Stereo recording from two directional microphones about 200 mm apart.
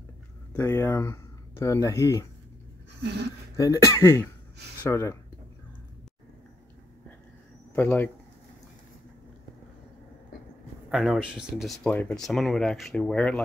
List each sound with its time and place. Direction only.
0.6 s speech: 10° left (ahead or behind)
3.5 s speech: 15° left (ahead or behind)
7.7 s speech: 10° left (ahead or behind)
10.9 s speech: centre (ahead or behind)